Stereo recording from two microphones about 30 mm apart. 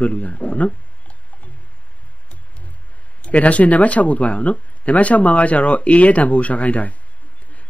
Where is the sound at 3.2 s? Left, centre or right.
Left.